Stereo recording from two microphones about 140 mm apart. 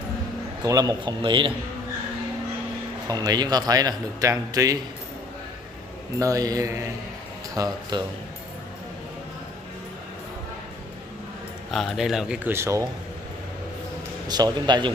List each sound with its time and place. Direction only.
0.7 s a man's voice: 25° right (ahead or behind)
3.1 s a man's voice: 30° right (ahead or behind)
6.1 s a man's voice: 25° right (ahead or behind)
11.7 s speech: centre (ahead or behind)
12.4 s a man's voice: 20° right (ahead or behind)
14.2 s a man's voice: 30° right (ahead or behind)